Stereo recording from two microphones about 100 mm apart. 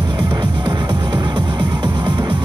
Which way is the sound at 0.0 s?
45° right (ahead or behind).